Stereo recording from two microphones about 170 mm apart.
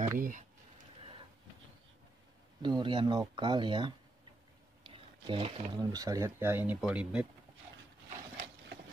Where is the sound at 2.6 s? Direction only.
25° right (ahead or behind); by 7.2 s 5° right (ahead or behind).